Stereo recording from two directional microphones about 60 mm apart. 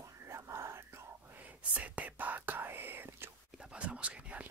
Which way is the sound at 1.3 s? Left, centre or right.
Right.